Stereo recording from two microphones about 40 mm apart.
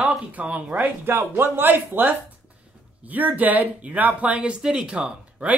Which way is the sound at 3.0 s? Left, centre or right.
Right.